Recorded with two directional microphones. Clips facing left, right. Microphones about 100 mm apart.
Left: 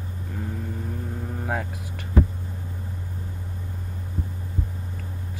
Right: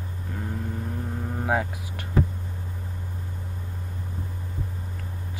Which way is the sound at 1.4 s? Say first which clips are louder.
Right 4 dB; 60° right (ahead or behind).